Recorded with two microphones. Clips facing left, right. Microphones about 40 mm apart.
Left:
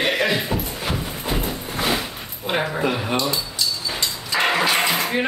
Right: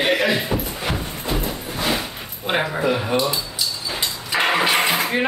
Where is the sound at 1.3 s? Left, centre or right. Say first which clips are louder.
Right 1 dB; centre.